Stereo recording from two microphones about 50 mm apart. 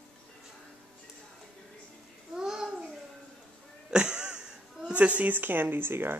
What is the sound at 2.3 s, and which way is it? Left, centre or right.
Babbling, centre.